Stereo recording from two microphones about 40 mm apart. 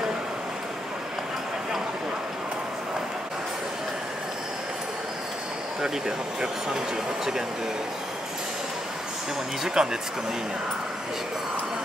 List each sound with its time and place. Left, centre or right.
5.8 s speech: centre
9.8 s speech: centre